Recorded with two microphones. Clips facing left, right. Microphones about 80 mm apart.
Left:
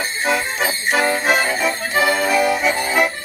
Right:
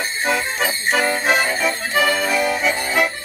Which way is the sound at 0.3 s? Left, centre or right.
Centre.